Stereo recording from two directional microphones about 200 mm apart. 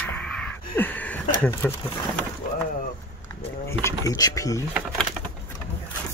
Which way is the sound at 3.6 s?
15° left (ahead or behind).